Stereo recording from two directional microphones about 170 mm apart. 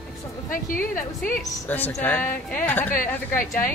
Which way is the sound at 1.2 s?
10° left (ahead or behind).